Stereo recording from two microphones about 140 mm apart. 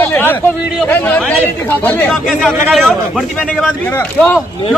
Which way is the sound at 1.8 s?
5° left (ahead or behind).